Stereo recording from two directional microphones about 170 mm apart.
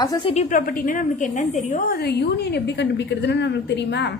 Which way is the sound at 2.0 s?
70° left (ahead or behind).